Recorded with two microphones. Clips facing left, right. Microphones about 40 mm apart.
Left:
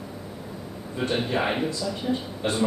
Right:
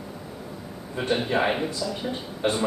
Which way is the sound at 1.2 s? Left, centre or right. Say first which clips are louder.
Right 1 dB; centre.